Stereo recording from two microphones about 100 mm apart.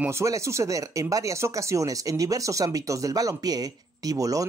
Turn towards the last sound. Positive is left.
turn(degrees=-35)  # may be behind; listen again after turning